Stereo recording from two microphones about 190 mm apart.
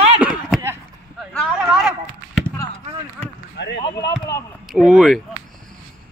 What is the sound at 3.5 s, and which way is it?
Basketball bounce, 65° left (ahead or behind).